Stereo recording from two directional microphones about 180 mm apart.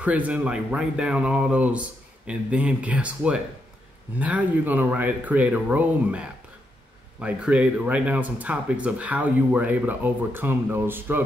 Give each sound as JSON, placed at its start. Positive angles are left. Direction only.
{"t": 0.0, "sound": "speech", "side_deg": -10}